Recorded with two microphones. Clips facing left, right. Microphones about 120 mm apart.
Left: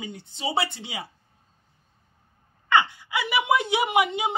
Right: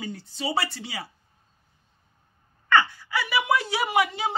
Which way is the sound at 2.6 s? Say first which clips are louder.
Even; 20° left (ahead or behind).